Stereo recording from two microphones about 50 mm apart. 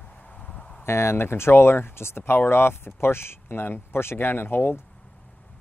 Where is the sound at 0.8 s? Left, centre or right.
Left.